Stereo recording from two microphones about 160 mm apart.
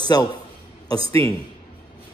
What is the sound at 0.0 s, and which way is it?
Speech, 25° left (ahead or behind).